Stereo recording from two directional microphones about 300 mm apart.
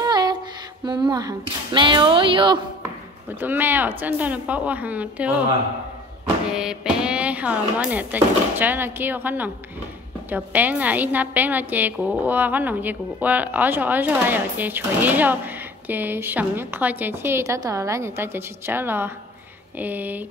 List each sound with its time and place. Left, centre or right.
0.0 s music: centre
0.8 s a woman's voice: centre
6.5 s a woman's voice: centre